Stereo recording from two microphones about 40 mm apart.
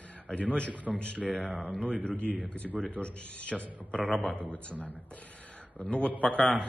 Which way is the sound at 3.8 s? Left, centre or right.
Left.